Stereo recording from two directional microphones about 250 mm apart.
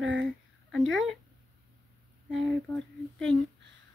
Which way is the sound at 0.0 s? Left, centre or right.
Right.